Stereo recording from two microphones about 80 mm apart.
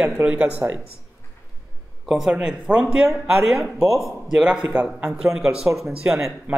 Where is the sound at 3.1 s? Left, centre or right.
Centre.